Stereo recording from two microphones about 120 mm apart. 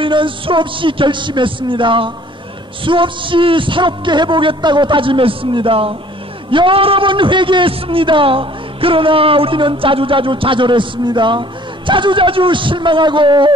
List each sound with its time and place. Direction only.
0.0 s a man's voice: 45° right (ahead or behind)